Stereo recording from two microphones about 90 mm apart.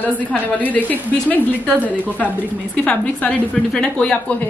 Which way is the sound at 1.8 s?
15° right (ahead or behind).